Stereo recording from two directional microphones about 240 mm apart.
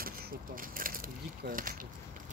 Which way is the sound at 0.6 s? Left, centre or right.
Right.